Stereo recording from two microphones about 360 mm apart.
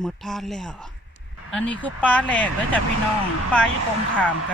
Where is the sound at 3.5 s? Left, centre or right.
Centre.